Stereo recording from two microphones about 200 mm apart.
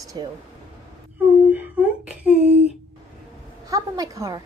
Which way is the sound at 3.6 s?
15° right (ahead or behind).